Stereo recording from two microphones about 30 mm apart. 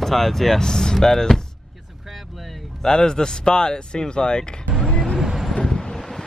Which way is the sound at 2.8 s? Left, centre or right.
Left.